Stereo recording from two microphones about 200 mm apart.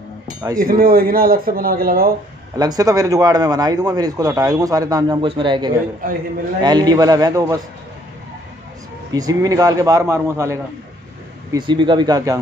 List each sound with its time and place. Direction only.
0.6 s speech: 45° right (ahead or behind)
2.5 s a man's voice: 20° right (ahead or behind)
6.0 s speech: 45° right (ahead or behind)
6.6 s a man's voice: 20° right (ahead or behind)
9.1 s a man's voice: 15° right (ahead or behind)